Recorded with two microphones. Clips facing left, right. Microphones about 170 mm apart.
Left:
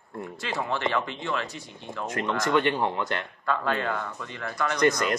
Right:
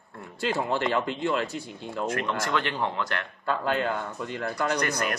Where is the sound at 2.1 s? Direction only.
20° left (ahead or behind).